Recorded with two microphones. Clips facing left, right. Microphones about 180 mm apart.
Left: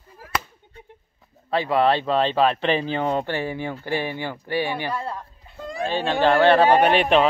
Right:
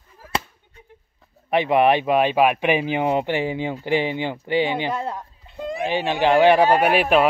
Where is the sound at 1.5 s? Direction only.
20° right (ahead or behind).